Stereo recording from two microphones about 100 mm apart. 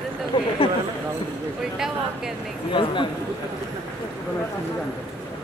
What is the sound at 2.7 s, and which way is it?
Speech, 55° left (ahead or behind).